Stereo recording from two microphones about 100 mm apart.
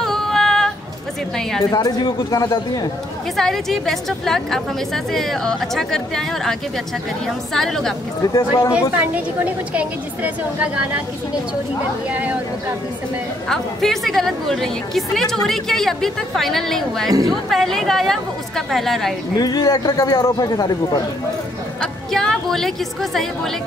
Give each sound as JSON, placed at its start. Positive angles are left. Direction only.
{"t": 0.0, "sound": "female singing", "side_deg": 5}
{"t": 1.7, "sound": "a man's voice", "side_deg": 40}
{"t": 3.3, "sound": "a woman's voice", "side_deg": 5}
{"t": 7.5, "sound": "a woman's voice", "side_deg": 5}
{"t": 8.2, "sound": "a man's voice", "side_deg": 35}
{"t": 8.9, "sound": "a woman's voice", "side_deg": -15}
{"t": 12.1, "sound": "a woman's voice", "side_deg": -15}
{"t": 13.5, "sound": "a woman's voice", "side_deg": 5}
{"t": 19.3, "sound": "a man's voice", "side_deg": 40}
{"t": 22.1, "sound": "a woman's voice", "side_deg": 5}